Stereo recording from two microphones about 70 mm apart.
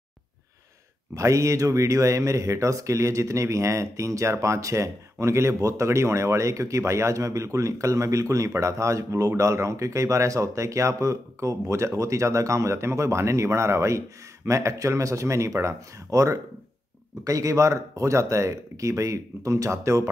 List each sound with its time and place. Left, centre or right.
1.1 s speech: right